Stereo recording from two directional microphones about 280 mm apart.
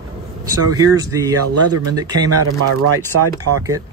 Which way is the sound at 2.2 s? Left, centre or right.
Right.